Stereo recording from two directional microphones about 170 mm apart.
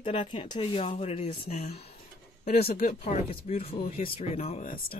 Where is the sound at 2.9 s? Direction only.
35° left (ahead or behind).